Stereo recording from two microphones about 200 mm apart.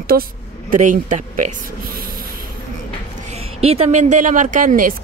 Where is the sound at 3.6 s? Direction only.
30° right (ahead or behind).